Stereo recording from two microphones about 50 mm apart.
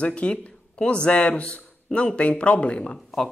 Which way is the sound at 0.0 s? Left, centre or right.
Left.